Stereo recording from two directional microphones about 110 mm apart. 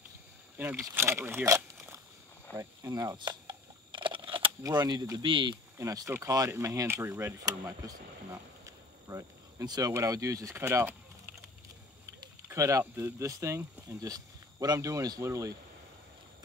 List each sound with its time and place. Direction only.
0.8 s speech: 25° right (ahead or behind)
2.5 s a sound: 25° right (ahead or behind); by 4.5 s 50° right (ahead or behind)
4.6 s speech: 40° right (ahead or behind)
5.2 s speech: 50° right (ahead or behind)
5.8 s speech: 30° right (ahead or behind)
8.6 s cricket: 30° right (ahead or behind)
12.4 s speech: 30° right (ahead or behind)